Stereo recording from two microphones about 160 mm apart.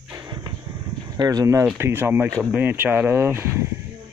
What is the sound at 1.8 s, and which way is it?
Speech, 15° right (ahead or behind).